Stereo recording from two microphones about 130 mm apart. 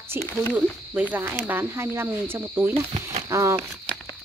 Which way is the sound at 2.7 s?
60° right (ahead or behind).